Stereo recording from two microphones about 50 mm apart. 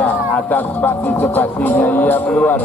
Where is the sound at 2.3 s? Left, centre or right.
Left.